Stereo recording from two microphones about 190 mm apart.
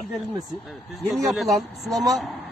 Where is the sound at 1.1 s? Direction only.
Centre (ahead or behind).